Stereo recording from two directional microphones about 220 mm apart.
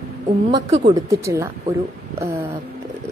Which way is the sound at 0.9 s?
15° right (ahead or behind).